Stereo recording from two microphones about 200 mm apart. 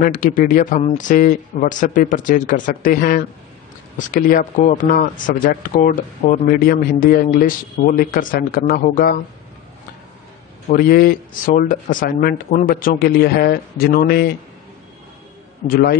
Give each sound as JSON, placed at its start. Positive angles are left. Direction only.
{"t": 0.0, "sound": "speech", "side_deg": 40}
{"t": 10.7, "sound": "speech", "side_deg": 45}
{"t": 15.6, "sound": "speech", "side_deg": 50}